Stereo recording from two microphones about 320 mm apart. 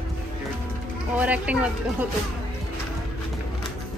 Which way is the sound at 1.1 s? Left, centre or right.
Centre.